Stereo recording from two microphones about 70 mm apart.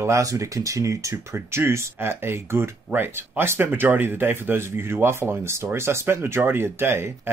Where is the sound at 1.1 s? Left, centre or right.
Right.